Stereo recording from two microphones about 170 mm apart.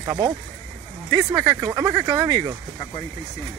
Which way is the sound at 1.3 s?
15° right (ahead or behind).